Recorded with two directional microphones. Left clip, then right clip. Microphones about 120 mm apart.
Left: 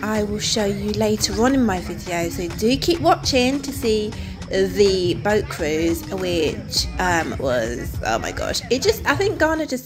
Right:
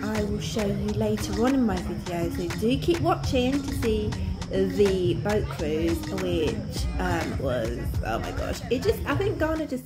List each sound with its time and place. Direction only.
0.4 s speech: 20° left (ahead or behind)
4.5 s speech: 10° left (ahead or behind)